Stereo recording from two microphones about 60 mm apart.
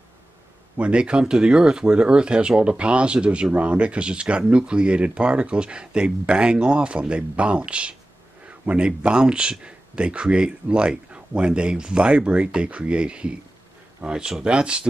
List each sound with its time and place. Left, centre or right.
0.7 s speech: centre